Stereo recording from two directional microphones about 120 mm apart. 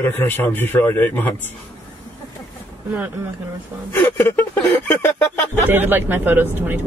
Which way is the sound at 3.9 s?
15° left (ahead or behind).